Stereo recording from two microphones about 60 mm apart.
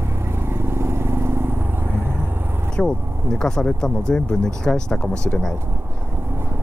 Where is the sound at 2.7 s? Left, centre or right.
Centre.